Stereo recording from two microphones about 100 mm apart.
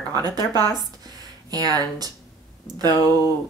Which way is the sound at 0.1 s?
40° right (ahead or behind).